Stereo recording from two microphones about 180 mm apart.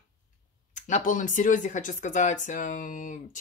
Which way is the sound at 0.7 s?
40° left (ahead or behind).